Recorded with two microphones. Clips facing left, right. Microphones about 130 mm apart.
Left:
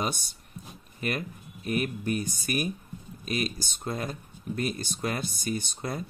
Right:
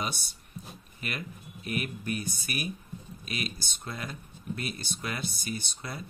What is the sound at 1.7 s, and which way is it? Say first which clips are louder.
Speech: left 5 dB; 40° left (ahead or behind).